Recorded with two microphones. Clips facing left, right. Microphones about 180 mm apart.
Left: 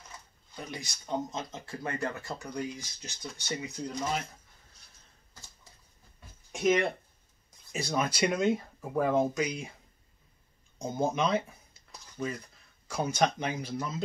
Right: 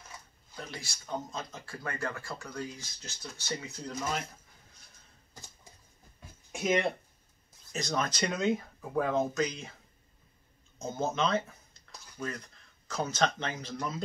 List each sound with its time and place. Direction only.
0.6 s speech: 15° left (ahead or behind)
6.5 s speech: centre (ahead or behind)
7.7 s speech: 10° left (ahead or behind)
10.8 s a sound: 15° left (ahead or behind)
12.8 s speech: 10° left (ahead or behind)